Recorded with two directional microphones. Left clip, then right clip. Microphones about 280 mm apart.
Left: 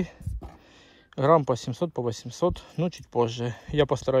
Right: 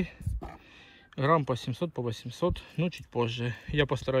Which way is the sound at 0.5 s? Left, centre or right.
Centre.